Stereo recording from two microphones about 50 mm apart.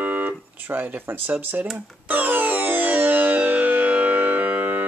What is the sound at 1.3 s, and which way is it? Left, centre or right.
Music, right.